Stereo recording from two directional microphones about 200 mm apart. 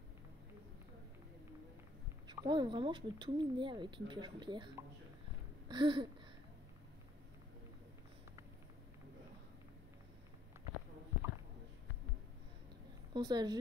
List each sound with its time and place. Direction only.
2.2 s speech: 20° right (ahead or behind)
5.7 s a sound: 25° right (ahead or behind)
13.1 s a woman's voice: 20° right (ahead or behind)